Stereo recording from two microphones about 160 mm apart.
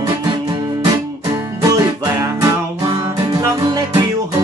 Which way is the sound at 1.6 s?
20° right (ahead or behind).